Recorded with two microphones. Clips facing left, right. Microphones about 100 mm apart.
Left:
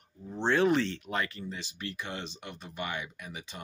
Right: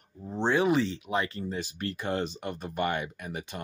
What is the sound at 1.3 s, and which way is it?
Speech, 40° right (ahead or behind).